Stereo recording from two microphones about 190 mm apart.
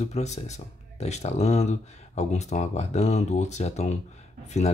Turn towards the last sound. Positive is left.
turn(degrees=35)  # may be behind; listen again after turning